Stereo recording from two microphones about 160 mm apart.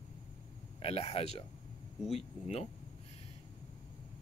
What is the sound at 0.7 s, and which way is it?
Speech, 40° left (ahead or behind).